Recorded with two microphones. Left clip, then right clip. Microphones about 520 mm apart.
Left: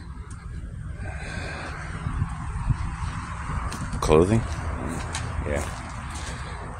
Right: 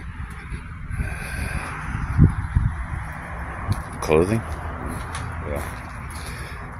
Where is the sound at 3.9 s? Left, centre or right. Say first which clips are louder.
Even; right.